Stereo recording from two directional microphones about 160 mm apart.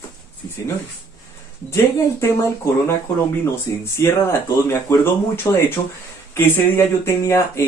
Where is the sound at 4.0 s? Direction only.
15° left (ahead or behind).